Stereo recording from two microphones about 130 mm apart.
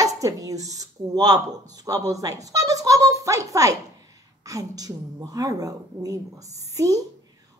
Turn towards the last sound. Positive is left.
turn(degrees=-25)  # may be behind; listen again after turning